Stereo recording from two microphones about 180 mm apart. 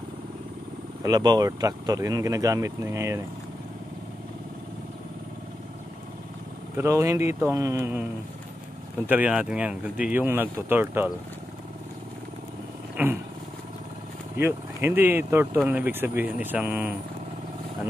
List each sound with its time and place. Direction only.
1.0 s speech: 20° right (ahead or behind)
6.8 s speech: 15° right (ahead or behind)
9.0 s speech: 10° right (ahead or behind)
12.9 s vehicle: 10° right (ahead or behind)
14.3 s speech: 10° right (ahead or behind)